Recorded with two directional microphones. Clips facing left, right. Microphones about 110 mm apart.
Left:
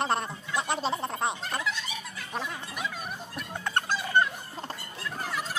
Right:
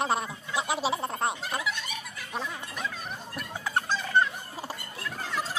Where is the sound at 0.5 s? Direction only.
5° right (ahead or behind).